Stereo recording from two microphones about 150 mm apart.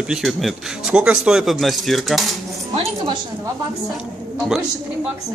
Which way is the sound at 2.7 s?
40° right (ahead or behind).